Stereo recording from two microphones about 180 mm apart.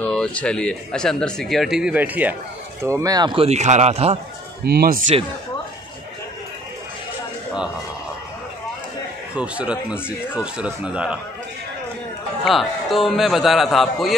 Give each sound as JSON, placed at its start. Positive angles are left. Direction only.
{"t": 0.0, "sound": "speech", "side_deg": 5}
{"t": 4.6, "sound": "speech", "side_deg": -55}
{"t": 9.3, "sound": "speech", "side_deg": -5}
{"t": 12.4, "sound": "speech", "side_deg": 0}